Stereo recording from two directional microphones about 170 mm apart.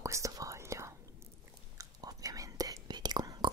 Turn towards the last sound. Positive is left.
turn(degrees=-25)  # may be behind; listen again after turning